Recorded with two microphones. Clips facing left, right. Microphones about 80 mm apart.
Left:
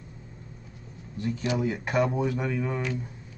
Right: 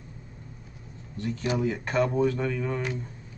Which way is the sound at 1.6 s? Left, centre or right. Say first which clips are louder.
Even; centre.